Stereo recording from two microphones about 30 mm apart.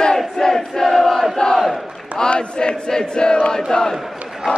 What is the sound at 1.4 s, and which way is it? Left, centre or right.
Battle cry, left.